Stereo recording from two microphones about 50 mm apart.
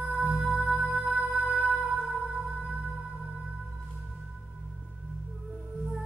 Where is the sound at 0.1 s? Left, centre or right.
Right.